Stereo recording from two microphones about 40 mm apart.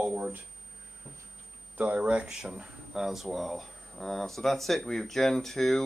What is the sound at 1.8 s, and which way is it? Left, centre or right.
Speech, right.